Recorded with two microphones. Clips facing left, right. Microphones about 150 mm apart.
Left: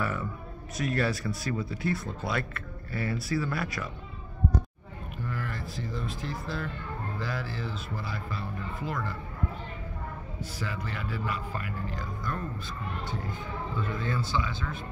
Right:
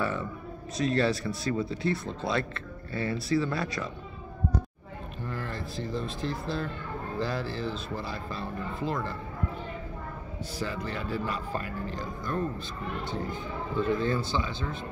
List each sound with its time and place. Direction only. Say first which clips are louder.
0.7 s speech: right 3 dB; 25° right (ahead or behind)
5.2 s speech: even; 25° right (ahead or behind)
10.6 s speech: right 3 dB; 30° right (ahead or behind)
13.7 s speech: right 7 dB; 30° right (ahead or behind)